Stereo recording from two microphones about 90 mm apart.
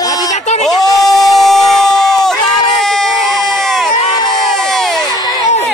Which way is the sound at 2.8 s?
5° left (ahead or behind).